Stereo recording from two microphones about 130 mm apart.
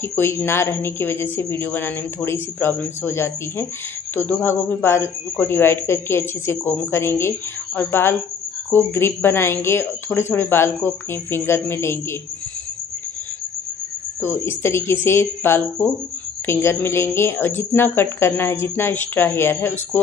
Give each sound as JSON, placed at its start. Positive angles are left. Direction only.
{"t": 0.1, "sound": "speech", "side_deg": 15}
{"t": 14.2, "sound": "speech", "side_deg": 20}